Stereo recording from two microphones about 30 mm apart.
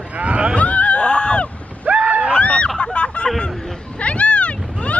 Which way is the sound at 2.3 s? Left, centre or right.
Left.